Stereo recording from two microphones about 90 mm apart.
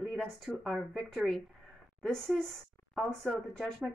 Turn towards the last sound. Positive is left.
turn(degrees=5)  # may be behind; listen again after turning